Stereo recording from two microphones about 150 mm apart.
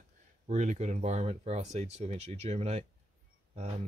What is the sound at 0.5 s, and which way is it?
Speech, 50° right (ahead or behind).